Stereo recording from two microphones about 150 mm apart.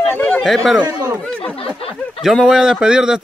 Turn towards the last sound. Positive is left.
turn(degrees=-5)  # may be behind; listen again after turning